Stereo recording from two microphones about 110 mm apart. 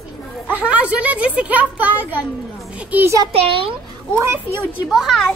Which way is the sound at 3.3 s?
60° right (ahead or behind).